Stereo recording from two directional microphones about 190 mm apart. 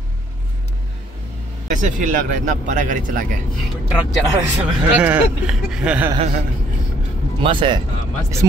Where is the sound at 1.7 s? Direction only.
40° right (ahead or behind).